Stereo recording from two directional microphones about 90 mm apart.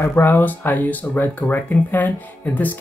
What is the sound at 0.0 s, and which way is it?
Speech, 25° left (ahead or behind).